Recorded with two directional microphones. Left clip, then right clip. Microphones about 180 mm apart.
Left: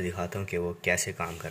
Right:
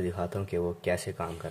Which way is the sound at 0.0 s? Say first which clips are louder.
Right 1 dB; 25° right (ahead or behind).